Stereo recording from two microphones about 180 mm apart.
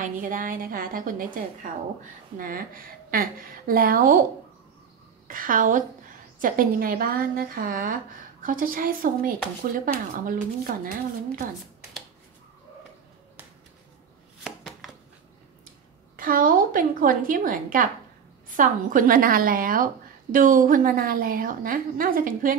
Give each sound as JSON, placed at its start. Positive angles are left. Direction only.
{"t": 0.0, "sound": "a woman's voice", "side_deg": -50}
{"t": 5.3, "sound": "a woman's voice", "side_deg": -50}
{"t": 14.4, "sound": "chopping", "side_deg": 0}
{"t": 16.2, "sound": "a woman's voice", "side_deg": -50}